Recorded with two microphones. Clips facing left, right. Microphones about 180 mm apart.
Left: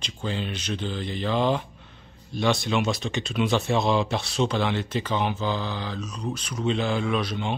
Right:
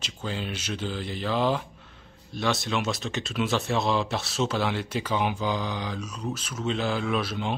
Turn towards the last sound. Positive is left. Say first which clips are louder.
# left 1 dB
turn(degrees=-5)  # may be behind; listen again after turning